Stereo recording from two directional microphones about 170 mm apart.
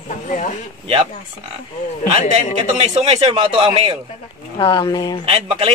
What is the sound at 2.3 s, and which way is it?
A man's voice, 35° right (ahead or behind).